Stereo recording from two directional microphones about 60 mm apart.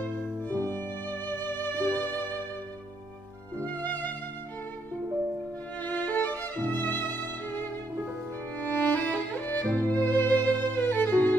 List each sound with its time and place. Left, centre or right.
0.5 s music: right
0.7 s music: left
3.6 s music: left
5.8 s violin: left
6.7 s music: left
8.7 s music: left